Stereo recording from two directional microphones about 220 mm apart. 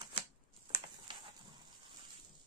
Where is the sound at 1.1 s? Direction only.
20° right (ahead or behind).